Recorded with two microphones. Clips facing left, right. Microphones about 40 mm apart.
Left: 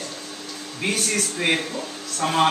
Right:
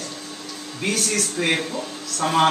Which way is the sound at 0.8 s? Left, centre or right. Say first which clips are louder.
Even; centre.